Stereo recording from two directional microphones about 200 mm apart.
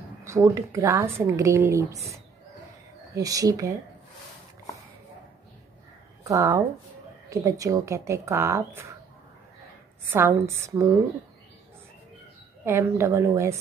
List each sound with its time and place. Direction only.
0.2 s speech: 15° right (ahead or behind)
3.2 s speech: 15° right (ahead or behind)
6.2 s speech: 15° right (ahead or behind)
10.1 s speech: 15° right (ahead or behind)
12.6 s speech: 15° right (ahead or behind)